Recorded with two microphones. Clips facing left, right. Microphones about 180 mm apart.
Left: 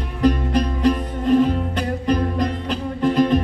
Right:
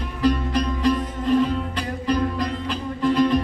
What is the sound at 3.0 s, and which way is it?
Music, 55° left (ahead or behind).